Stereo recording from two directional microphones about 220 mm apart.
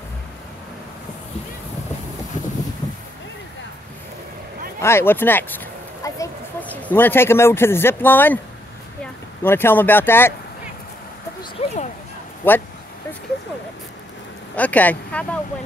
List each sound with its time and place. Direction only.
4.7 s speech: 10° left (ahead or behind)
9.4 s speech: 10° left (ahead or behind)
11.6 s a sound: 30° left (ahead or behind)
12.4 s speech: 10° left (ahead or behind)
14.5 s speech: 5° left (ahead or behind)